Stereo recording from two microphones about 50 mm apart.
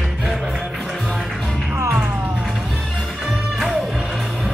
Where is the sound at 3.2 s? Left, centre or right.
Centre.